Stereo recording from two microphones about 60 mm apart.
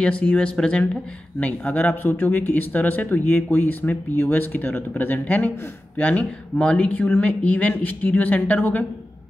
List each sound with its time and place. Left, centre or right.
0.0 s speech: left
1.4 s speech: left
6.6 s speech: centre
6.9 s speech: left